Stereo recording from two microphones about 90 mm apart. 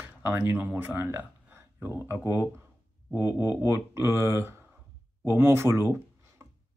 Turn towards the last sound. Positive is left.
turn(degrees=-30)  # may be behind; listen again after turning